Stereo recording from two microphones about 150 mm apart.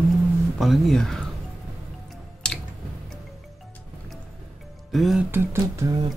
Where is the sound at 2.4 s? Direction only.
5° left (ahead or behind).